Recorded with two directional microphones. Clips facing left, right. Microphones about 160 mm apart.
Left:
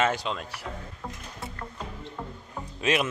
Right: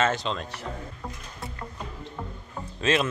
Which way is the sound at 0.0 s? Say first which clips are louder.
Right 1 dB; 10° left (ahead or behind).